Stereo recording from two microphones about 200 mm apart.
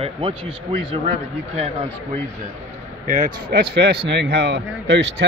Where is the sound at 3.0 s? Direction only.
40° right (ahead or behind); by 5.2 s 60° right (ahead or behind).